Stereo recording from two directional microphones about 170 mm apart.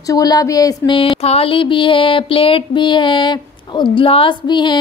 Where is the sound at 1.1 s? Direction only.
35° left (ahead or behind).